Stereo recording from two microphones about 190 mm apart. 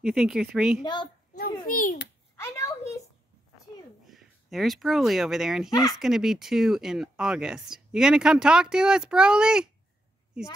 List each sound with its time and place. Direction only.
0.0 s speech: 5° right (ahead or behind)
1.3 s a child's voice: 45° left (ahead or behind)
2.3 s a sound: 15° left (ahead or behind)
4.1 s speech: centre (ahead or behind)
5.7 s speech: 20° left (ahead or behind)
5.9 s speech: centre (ahead or behind)